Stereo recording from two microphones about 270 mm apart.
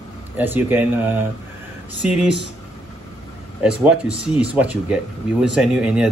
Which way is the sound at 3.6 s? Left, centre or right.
Centre.